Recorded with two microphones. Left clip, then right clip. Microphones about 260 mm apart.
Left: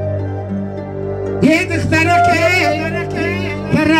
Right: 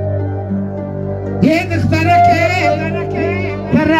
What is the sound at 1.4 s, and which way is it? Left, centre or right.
Music, centre.